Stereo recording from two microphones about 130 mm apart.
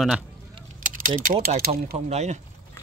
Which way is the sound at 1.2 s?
90° right.